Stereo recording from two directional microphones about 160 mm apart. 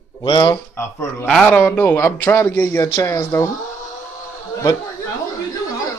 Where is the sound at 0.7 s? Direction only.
20° left (ahead or behind).